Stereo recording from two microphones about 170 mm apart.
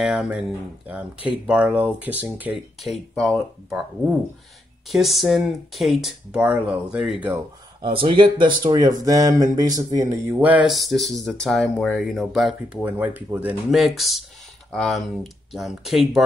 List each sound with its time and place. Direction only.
0.0 s speech: 5° right (ahead or behind)
4.8 s speech: centre (ahead or behind)
7.8 s speech: 30° right (ahead or behind)
10.4 s speech: 5° right (ahead or behind)